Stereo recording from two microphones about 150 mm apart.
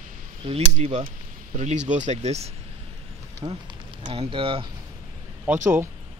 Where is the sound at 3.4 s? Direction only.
30° right (ahead or behind).